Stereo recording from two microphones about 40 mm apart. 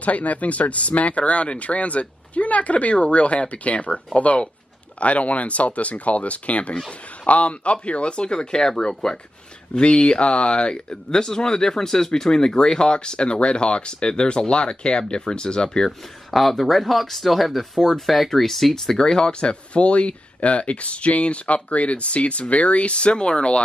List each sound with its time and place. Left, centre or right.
0.0 s speech: left; by 15.9 s centre
16.3 s speech: centre
18.9 s speech: centre